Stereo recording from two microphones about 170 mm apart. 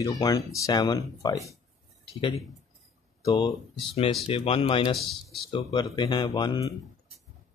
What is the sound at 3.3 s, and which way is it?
Speech, 25° left (ahead or behind).